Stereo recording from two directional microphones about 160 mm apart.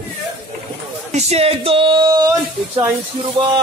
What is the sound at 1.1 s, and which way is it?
Speech, 45° right (ahead or behind).